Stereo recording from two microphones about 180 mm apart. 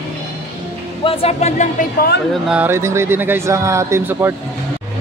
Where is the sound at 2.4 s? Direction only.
10° right (ahead or behind).